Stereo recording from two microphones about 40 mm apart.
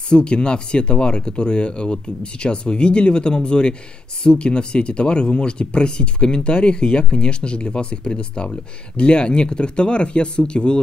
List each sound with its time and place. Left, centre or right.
0.1 s speech: left